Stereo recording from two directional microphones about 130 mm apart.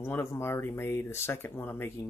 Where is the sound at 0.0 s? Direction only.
20° left (ahead or behind).